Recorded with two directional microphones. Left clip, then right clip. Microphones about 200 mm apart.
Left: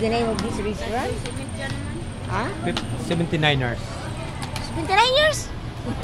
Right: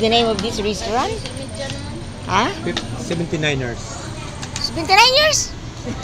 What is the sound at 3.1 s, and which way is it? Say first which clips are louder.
Speech: even; 30° left (ahead or behind).